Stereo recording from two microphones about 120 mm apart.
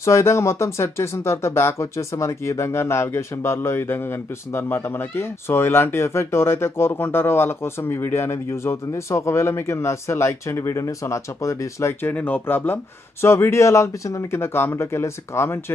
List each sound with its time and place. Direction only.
0.0 s speech: 25° left (ahead or behind)